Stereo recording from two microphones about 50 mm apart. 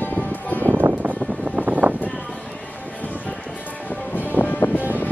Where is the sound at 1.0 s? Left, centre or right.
Right.